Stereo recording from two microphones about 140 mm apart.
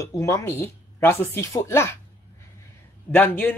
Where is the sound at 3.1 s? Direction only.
15° left (ahead or behind).